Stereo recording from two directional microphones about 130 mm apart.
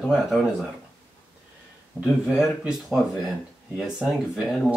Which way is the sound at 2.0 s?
5° right (ahead or behind).